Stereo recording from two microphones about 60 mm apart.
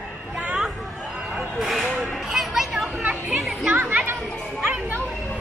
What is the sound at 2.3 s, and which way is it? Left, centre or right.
Chatter, centre.